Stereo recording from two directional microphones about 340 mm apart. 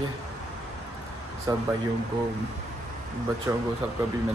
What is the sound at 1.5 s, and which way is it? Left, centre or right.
Speech, centre.